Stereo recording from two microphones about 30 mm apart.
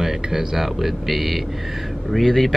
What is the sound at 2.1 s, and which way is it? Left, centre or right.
Speech, centre.